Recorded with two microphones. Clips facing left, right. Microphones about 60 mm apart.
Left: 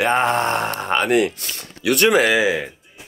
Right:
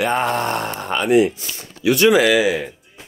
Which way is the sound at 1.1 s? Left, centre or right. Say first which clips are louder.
Right 3 dB; left.